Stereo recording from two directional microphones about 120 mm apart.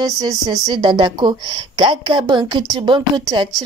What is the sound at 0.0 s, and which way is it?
A woman's voice, 30° right (ahead or behind).